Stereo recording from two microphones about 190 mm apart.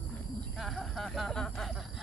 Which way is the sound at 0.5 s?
Centre (ahead or behind).